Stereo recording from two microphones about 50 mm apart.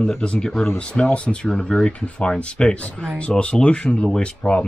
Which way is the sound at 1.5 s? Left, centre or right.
Centre.